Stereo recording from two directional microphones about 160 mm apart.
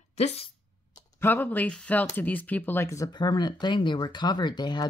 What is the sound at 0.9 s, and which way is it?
Speech, 15° left (ahead or behind).